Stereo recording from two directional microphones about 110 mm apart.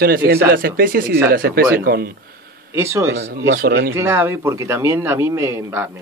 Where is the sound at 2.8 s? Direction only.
25° right (ahead or behind).